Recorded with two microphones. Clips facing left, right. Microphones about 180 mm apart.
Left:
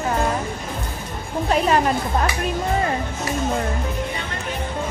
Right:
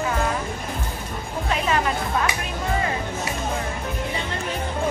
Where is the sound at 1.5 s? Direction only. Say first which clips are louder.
Left 5 dB; 40° left (ahead or behind).